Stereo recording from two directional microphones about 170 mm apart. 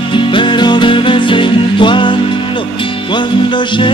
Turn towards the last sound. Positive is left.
turn(degrees=30)  # may be behind; listen again after turning